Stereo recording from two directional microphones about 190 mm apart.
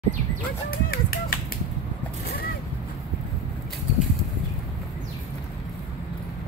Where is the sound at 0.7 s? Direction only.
50° left (ahead or behind).